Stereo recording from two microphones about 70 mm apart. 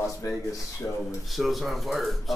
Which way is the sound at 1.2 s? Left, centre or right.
Centre.